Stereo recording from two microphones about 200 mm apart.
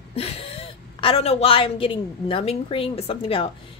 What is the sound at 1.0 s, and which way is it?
A woman's voice, 30° left (ahead or behind).